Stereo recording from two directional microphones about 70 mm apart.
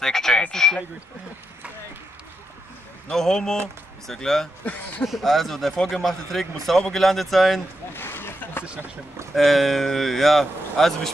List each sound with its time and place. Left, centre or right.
0.0 s speech: centre
3.1 s speech: centre
4.6 s speech: left
5.0 s speech: centre
7.9 s a sound: left
9.3 s speech: centre